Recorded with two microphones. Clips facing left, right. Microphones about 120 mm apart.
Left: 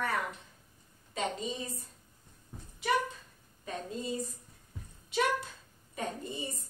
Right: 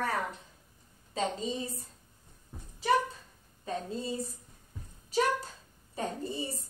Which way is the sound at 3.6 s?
30° right (ahead or behind).